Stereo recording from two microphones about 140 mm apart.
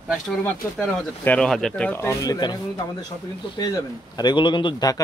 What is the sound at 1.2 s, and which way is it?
A man's voice, 5° left (ahead or behind).